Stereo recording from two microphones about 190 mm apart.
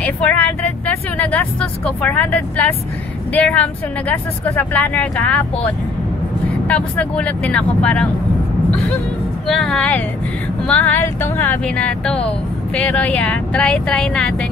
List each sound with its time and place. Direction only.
0.0 s speech: 10° left (ahead or behind)
6.7 s speech: 5° left (ahead or behind)
9.5 s speech: centre (ahead or behind)